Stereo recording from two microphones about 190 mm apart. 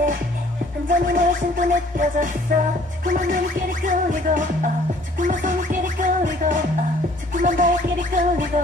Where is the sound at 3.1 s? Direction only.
45° right (ahead or behind).